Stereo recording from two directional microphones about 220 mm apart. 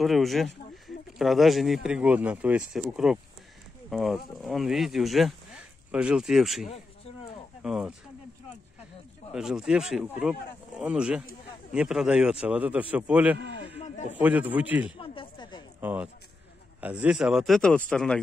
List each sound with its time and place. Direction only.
0.0 s speech: centre (ahead or behind)
9.3 s a man's voice: 5° right (ahead or behind)
15.0 s a sound: 20° left (ahead or behind)
15.8 s speech: 10° right (ahead or behind)